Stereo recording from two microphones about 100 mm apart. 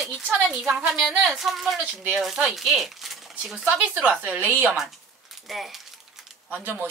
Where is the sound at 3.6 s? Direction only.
15° right (ahead or behind).